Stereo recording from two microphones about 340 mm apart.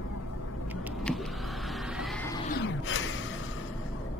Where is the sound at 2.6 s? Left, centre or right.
Left.